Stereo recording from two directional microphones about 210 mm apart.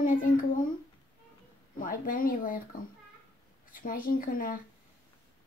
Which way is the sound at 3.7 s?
40° left (ahead or behind).